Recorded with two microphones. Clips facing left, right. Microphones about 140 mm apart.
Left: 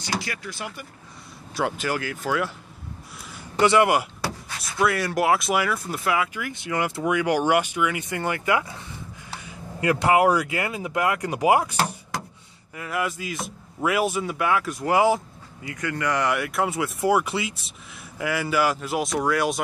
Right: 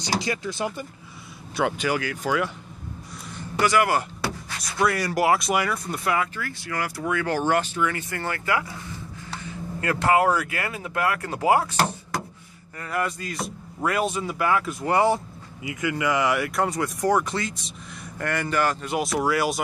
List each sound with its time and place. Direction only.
0.2 s speech: 25° right (ahead or behind)
1.6 s speech: centre (ahead or behind)
3.5 s speech: 25° left (ahead or behind)
4.6 s speech: 5° left (ahead or behind)
6.4 s speech: 20° left (ahead or behind); by 15.2 s 5° left (ahead or behind)
15.6 s speech: 10° right (ahead or behind)